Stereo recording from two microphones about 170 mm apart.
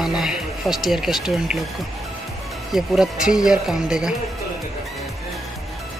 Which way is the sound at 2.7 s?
5° right (ahead or behind).